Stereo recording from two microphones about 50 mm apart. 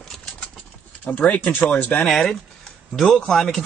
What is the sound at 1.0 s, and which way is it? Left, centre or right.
Speech, left.